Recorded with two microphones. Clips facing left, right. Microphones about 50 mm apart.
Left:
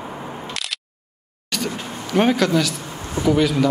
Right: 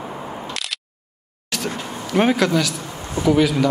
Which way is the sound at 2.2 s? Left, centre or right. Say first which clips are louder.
Even; centre.